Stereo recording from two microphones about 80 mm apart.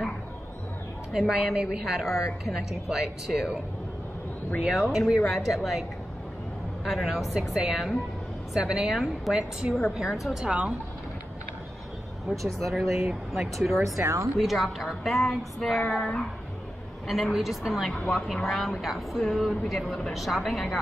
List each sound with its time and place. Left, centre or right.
1.1 s speech: centre
4.6 s a woman's voice: centre
12.5 s speech: centre
13.8 s a woman's voice: right
14.4 s speech: centre